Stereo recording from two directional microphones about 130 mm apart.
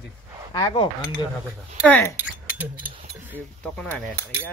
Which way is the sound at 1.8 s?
15° left (ahead or behind).